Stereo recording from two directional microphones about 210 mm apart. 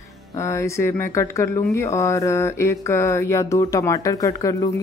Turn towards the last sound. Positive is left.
turn(degrees=15)  # may be behind; listen again after turning